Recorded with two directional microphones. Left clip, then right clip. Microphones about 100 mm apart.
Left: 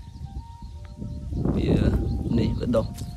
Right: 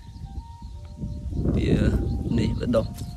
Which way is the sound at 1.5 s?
45° left (ahead or behind).